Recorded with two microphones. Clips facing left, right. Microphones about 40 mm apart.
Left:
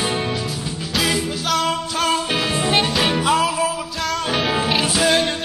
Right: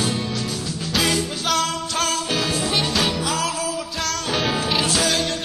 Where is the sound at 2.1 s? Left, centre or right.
Left.